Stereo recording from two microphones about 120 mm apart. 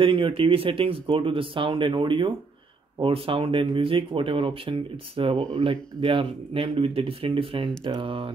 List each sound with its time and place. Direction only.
0.0 s speech: 45° right (ahead or behind)